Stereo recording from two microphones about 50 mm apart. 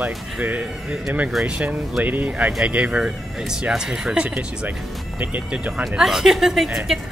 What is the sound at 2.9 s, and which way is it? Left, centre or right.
Speech, centre.